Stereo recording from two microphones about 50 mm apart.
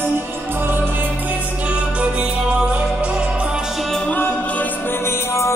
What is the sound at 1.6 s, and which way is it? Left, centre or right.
Music, right.